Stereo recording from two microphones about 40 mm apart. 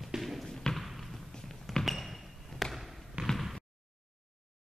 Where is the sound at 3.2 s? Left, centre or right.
Right.